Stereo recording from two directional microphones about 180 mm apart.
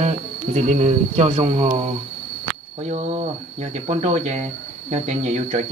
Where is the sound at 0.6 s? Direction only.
40° right (ahead or behind).